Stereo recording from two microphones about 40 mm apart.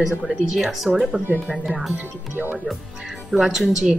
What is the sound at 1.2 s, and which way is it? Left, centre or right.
Speech, right.